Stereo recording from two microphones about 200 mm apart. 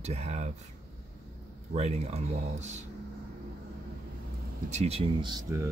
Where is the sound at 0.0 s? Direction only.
30° right (ahead or behind).